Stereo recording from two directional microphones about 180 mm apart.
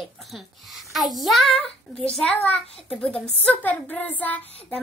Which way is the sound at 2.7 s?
35° left (ahead or behind).